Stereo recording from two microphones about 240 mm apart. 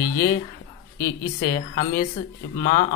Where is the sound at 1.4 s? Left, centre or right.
Left.